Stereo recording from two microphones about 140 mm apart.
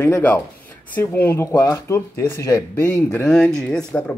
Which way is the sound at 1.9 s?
15° left (ahead or behind).